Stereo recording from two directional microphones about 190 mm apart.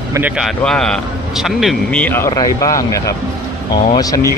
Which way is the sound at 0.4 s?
5° left (ahead or behind).